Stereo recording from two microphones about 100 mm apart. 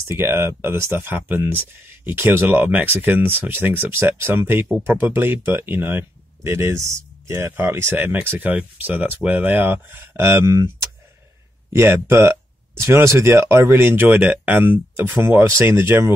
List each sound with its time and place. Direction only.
0.1 s speech: 25° right (ahead or behind)
11.7 s speech: 25° right (ahead or behind)